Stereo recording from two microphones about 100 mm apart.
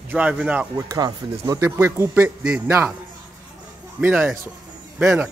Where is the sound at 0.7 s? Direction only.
40° right (ahead or behind); by 2.6 s 10° right (ahead or behind).